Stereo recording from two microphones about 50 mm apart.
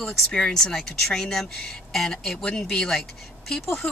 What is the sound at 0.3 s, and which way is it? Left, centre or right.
Speech, centre.